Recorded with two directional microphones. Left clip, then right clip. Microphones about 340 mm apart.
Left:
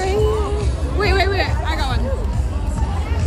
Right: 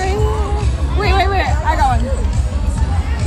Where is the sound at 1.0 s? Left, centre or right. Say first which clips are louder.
Right 2 dB; centre.